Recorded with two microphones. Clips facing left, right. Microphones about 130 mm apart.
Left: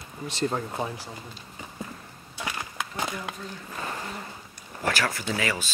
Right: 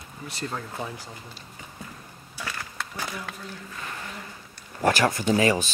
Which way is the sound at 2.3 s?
20° left (ahead or behind).